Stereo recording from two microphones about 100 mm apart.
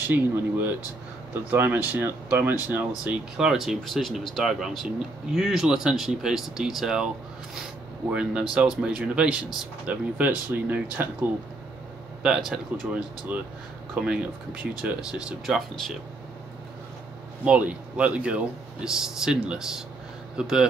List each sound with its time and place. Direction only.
0.1 s speech: 20° right (ahead or behind)
3.1 s speech: 5° right (ahead or behind)
8.1 s speech: 10° right (ahead or behind)
12.2 s speech: 5° right (ahead or behind)
13.3 s speech: 15° right (ahead or behind); by 16.0 s centre (ahead or behind)
17.5 s speech: 10° right (ahead or behind)